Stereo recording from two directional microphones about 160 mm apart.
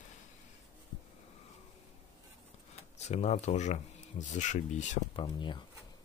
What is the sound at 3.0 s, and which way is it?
Speech, 45° left (ahead or behind).